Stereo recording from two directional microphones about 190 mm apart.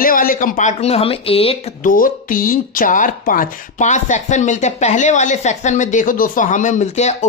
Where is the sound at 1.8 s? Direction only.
45° left (ahead or behind).